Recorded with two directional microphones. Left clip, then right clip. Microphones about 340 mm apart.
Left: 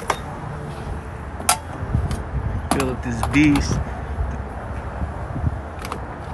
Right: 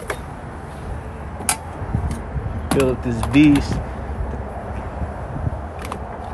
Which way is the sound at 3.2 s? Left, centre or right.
Centre.